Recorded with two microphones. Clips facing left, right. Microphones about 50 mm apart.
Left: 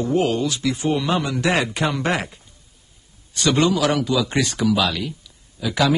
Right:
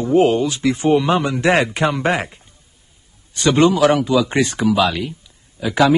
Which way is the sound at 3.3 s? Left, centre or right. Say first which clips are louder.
Right 4 dB; right.